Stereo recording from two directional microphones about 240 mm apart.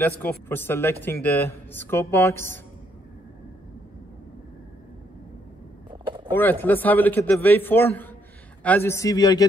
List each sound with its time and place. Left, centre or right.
0.5 s speech: centre
5.9 s a sound: right
6.3 s speech: centre